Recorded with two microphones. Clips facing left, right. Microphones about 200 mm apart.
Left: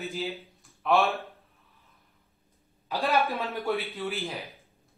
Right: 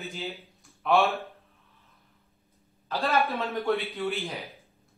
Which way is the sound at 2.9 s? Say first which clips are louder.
Even; 15° left (ahead or behind).